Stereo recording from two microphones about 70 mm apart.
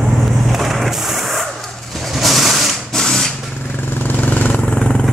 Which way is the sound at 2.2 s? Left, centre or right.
Centre.